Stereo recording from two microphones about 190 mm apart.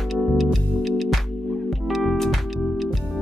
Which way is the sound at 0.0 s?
Centre (ahead or behind).